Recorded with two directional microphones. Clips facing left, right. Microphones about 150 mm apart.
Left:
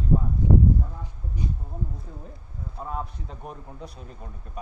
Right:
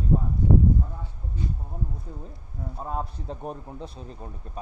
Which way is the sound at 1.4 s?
15° left (ahead or behind).